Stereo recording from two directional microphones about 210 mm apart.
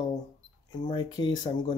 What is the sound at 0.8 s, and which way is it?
Speech, 20° left (ahead or behind).